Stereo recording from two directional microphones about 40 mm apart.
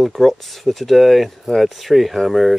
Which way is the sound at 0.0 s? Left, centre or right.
Centre.